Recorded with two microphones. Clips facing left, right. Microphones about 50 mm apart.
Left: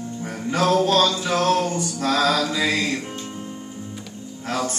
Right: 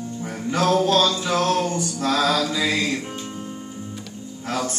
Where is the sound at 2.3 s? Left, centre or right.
Centre.